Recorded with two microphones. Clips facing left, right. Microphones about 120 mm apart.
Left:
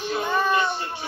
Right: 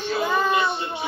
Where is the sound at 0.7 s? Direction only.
20° right (ahead or behind).